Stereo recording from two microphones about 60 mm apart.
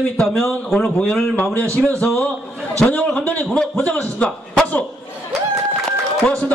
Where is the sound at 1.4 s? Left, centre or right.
Left.